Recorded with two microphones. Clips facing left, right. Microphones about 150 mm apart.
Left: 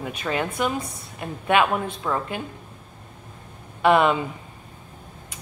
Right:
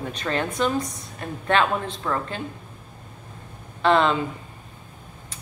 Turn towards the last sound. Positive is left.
turn(degrees=10)  # may be behind; listen again after turning